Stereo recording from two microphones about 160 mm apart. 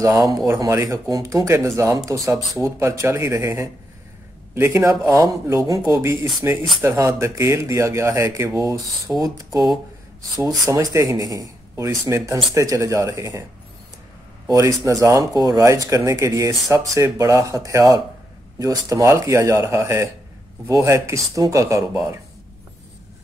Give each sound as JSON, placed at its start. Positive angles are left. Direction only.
{"t": 0.0, "sound": "speech", "side_deg": -20}
{"t": 14.9, "sound": "speech", "side_deg": -20}